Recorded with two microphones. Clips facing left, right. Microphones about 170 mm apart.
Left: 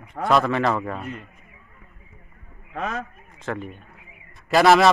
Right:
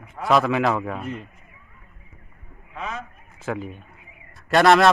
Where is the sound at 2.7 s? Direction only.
45° left (ahead or behind).